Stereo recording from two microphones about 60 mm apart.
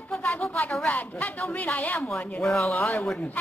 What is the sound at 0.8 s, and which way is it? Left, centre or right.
Speech, left.